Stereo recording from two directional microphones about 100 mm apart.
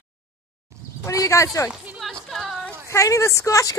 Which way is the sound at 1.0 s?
35° left (ahead or behind).